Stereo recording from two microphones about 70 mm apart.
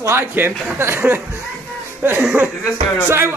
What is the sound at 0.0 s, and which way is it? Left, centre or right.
Speech, right.